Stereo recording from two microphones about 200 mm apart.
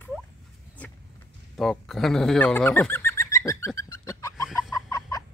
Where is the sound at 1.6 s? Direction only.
Centre (ahead or behind).